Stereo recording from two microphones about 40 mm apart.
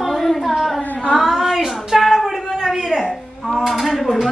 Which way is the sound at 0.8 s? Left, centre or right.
Left.